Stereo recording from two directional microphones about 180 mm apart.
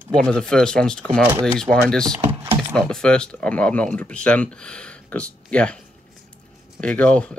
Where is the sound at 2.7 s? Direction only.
5° left (ahead or behind).